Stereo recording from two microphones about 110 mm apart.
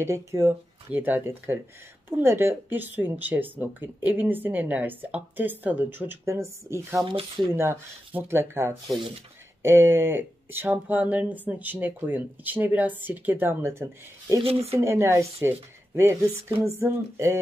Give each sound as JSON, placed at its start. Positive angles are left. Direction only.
{"t": 0.0, "sound": "speech", "side_deg": -25}
{"t": 7.1, "sound": "speech", "side_deg": -50}
{"t": 7.5, "sound": "speech", "side_deg": -20}
{"t": 14.4, "sound": "speech", "side_deg": -65}
{"t": 14.8, "sound": "speech", "side_deg": -25}